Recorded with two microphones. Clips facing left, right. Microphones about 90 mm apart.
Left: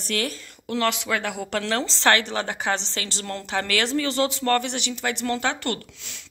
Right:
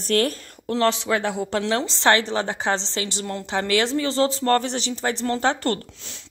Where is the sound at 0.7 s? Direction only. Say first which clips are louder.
Right 3 dB; 30° right (ahead or behind).